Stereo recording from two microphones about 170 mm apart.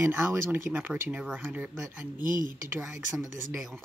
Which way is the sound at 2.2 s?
55° right (ahead or behind).